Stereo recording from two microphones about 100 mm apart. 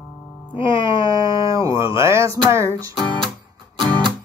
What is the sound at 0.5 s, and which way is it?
Music, 50° left (ahead or behind).